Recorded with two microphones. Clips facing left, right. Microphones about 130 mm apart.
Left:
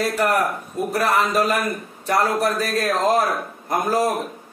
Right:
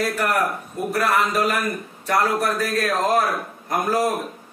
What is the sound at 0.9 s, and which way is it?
Speech, 20° left (ahead or behind).